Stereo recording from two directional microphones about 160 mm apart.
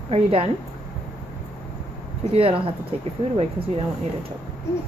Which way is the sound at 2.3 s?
35° right (ahead or behind).